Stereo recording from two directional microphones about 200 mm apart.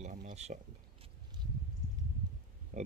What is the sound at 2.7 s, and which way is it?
Pig, 40° right (ahead or behind).